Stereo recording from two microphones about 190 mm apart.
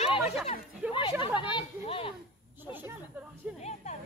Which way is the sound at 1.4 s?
25° left (ahead or behind).